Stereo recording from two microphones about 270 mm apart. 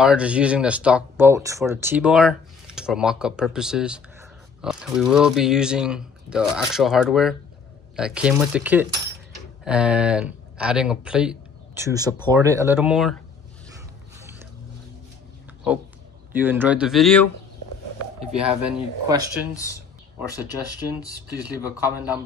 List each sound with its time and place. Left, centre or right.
0.0 s speech: centre
16.3 s speech: centre
18.7 s speech: centre
21.5 s speech: centre